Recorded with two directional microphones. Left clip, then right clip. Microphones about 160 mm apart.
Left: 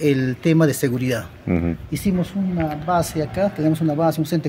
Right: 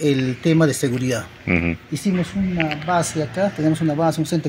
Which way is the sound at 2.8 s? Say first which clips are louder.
Left 2 dB; 5° right (ahead or behind).